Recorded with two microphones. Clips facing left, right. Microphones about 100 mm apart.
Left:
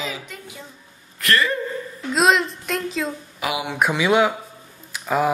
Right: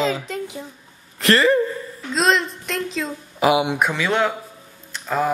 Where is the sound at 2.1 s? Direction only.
5° left (ahead or behind).